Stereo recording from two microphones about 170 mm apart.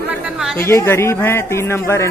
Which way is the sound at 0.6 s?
15° left (ahead or behind).